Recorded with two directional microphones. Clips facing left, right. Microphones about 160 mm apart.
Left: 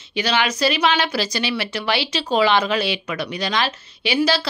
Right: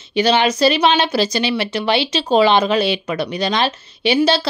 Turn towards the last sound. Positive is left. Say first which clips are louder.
# right 4 dB
turn(degrees=-25)  # may be behind; listen again after turning